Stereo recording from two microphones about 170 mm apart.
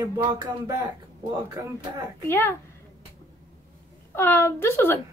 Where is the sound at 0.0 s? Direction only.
20° right (ahead or behind).